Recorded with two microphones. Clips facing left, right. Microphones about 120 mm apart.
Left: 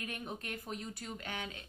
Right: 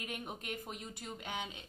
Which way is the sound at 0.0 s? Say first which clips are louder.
Left 1 dB; 15° right (ahead or behind).